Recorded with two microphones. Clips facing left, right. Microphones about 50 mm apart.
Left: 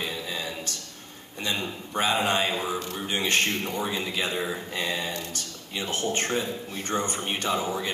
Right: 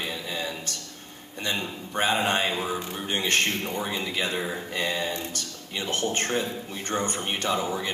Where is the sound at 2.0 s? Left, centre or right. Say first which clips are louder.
Even; right.